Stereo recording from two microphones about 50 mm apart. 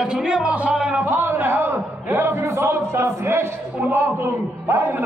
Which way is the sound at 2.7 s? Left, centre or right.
Right.